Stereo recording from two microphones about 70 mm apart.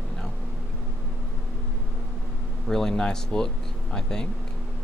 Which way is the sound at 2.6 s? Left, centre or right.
Centre.